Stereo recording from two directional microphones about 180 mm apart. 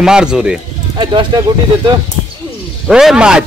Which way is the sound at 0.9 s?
25° right (ahead or behind).